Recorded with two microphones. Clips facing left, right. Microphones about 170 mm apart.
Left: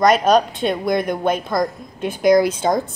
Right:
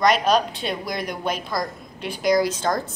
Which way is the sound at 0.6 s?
50° left (ahead or behind).